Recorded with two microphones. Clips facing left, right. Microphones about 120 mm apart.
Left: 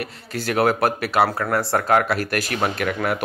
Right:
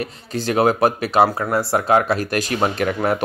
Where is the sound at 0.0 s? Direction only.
25° right (ahead or behind).